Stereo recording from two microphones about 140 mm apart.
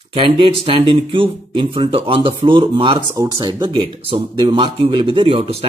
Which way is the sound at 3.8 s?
45° right (ahead or behind).